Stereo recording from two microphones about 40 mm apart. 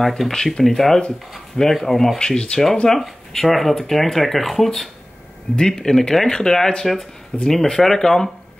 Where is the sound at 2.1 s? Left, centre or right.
Left.